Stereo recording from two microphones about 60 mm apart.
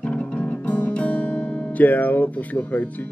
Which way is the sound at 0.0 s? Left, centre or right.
Left.